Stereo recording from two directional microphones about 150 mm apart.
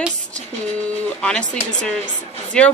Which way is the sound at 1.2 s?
5° left (ahead or behind).